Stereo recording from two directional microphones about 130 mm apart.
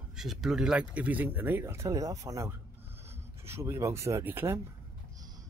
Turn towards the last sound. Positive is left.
turn(degrees=-20)  # may be behind; listen again after turning